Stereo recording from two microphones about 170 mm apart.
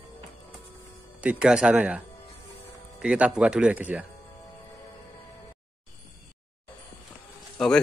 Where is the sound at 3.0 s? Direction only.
5° right (ahead or behind).